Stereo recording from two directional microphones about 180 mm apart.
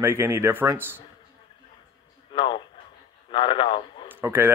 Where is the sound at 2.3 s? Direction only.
25° left (ahead or behind).